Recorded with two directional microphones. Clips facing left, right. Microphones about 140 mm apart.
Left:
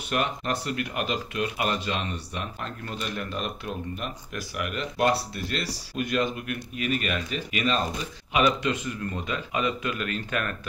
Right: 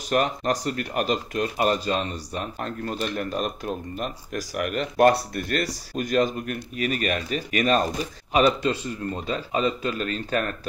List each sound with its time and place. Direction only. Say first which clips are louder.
0.1 s speech: right 5 dB; 40° right (ahead or behind)